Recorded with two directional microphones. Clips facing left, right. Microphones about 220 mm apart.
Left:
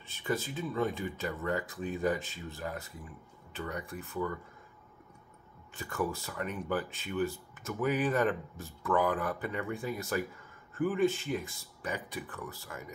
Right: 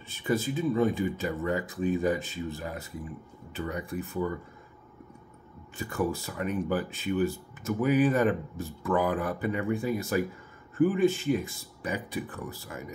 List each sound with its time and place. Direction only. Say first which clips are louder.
0.1 s speech: right 6 dB; 5° right (ahead or behind)
5.8 s speech: right 5 dB; 5° right (ahead or behind)